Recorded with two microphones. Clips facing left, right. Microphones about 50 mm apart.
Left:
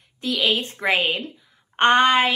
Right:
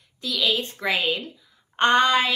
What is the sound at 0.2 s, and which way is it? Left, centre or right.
Speech, left.